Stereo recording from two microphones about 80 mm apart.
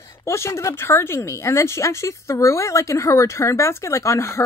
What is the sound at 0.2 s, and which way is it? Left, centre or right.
Speech, left.